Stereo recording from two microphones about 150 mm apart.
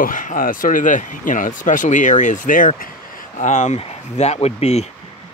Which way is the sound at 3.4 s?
50° left (ahead or behind).